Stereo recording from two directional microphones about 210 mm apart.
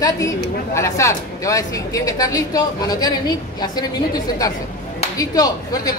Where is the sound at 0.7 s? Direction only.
15° left (ahead or behind).